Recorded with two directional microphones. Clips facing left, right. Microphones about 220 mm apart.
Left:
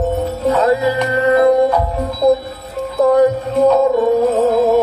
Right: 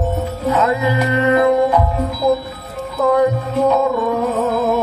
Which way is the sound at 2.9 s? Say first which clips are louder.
Left 3 dB; 30° left (ahead or behind).